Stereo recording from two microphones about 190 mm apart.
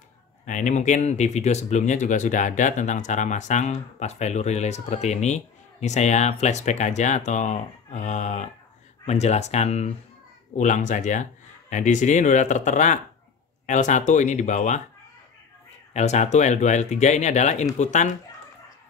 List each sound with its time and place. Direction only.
0.5 s speech: 40° left (ahead or behind)
15.9 s speech: 35° left (ahead or behind)